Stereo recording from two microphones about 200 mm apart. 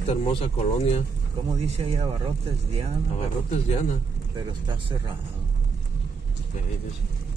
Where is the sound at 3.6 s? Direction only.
35° left (ahead or behind).